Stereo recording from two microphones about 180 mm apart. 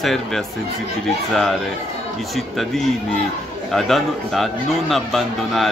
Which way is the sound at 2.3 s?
Centre (ahead or behind).